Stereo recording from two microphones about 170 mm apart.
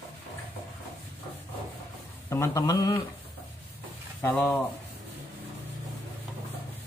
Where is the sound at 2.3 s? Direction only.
20° left (ahead or behind).